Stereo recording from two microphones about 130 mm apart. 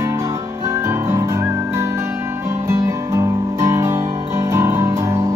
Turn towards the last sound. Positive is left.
turn(degrees=-20)  # may be behind; listen again after turning